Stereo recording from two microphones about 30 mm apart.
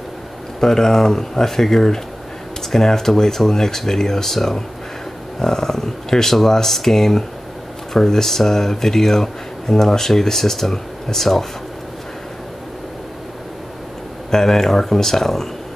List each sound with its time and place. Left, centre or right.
0.6 s speech: centre
14.3 s speech: centre